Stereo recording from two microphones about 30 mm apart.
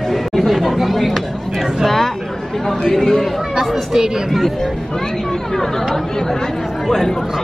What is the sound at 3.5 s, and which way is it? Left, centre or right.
Speech, centre.